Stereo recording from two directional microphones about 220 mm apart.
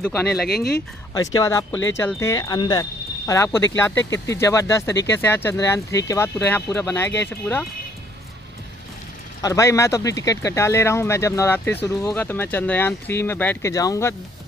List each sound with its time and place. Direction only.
0.3 s speech: 45° left (ahead or behind)
1.1 s speech: 15° left (ahead or behind)
9.4 s speech: 15° left (ahead or behind)